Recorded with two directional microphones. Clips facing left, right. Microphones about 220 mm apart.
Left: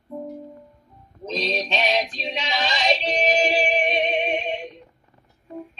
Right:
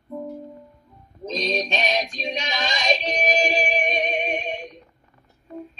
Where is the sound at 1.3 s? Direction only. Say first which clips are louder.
Right 1 dB; 15° right (ahead or behind).